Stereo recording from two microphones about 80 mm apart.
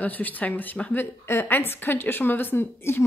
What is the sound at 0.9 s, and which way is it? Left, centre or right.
A woman's voice, left.